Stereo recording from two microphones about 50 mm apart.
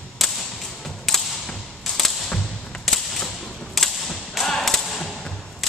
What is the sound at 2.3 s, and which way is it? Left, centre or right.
Thump, centre.